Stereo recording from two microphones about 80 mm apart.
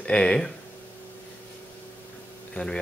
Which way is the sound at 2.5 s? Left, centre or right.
Centre.